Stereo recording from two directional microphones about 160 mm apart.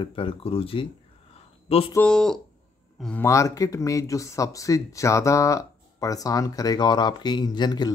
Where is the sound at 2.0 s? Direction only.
5° left (ahead or behind).